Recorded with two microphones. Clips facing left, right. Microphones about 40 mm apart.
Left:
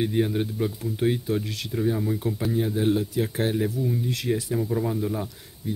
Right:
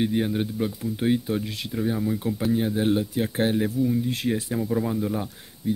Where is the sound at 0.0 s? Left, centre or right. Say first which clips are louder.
Even; centre.